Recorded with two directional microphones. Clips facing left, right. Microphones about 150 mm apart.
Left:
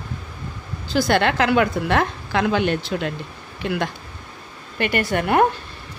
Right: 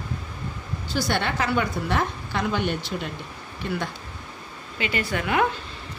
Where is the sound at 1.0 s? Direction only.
90° left.